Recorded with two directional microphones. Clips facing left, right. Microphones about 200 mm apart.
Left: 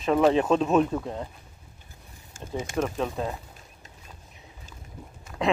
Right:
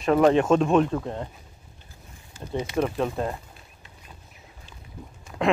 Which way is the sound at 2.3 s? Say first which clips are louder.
Right 2 dB; 45° left (ahead or behind).